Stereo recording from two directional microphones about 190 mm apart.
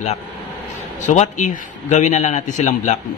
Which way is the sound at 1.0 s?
40° left (ahead or behind).